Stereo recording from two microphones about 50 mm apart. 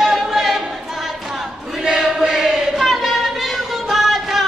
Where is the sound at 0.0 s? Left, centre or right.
Centre.